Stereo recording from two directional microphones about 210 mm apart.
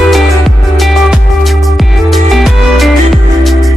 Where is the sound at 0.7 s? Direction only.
Centre (ahead or behind).